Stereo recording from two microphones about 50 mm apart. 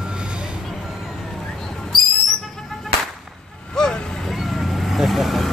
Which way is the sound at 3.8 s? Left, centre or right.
Centre.